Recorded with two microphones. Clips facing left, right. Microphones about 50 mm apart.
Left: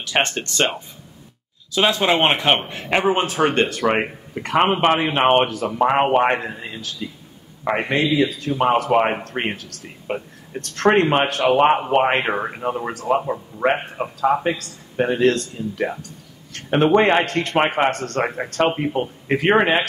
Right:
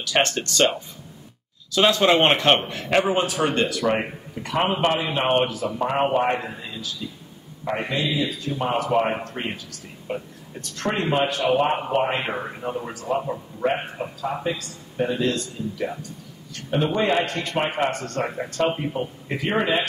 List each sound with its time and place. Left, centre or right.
0.0 s speech: left
1.7 s speech: centre
2.7 s speech: left
4.4 s speech: left
12.2 s speech: left